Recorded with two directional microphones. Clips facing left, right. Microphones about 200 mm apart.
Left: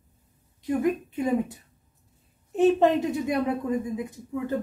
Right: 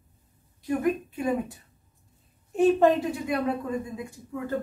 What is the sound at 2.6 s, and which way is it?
Speech, 20° left (ahead or behind).